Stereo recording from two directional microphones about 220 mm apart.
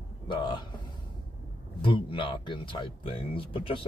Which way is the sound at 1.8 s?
25° left (ahead or behind).